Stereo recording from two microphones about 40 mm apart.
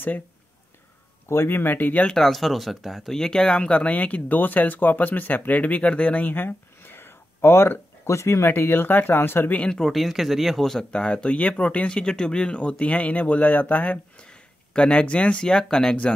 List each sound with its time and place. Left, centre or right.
1.3 s speech: left
1.8 s speech: left
2.1 s speech: centre
3.1 s speech: centre
3.9 s speech: left
6.2 s a sound: left
8.5 s speech: left
9.7 s speech: centre
9.9 s speech: centre
10.6 s speech: centre
10.9 s speech: left
11.9 s speech: left
14.2 s a sound: left
15.4 s speech: centre